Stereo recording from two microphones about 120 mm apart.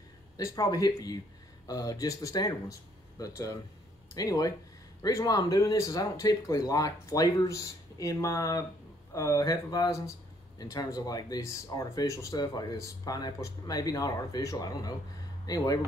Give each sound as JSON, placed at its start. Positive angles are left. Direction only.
{"t": 0.4, "sound": "speech", "side_deg": 30}